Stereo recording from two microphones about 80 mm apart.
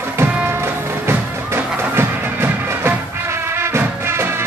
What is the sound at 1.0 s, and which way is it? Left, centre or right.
Music, right.